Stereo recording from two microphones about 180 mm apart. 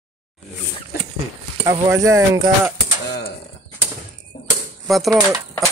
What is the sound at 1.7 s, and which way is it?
Speech, 20° right (ahead or behind).